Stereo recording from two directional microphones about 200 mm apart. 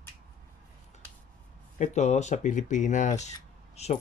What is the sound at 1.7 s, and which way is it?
Speech, 35° left (ahead or behind).